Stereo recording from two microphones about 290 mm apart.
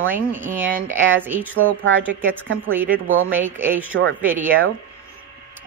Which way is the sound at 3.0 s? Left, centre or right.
Right.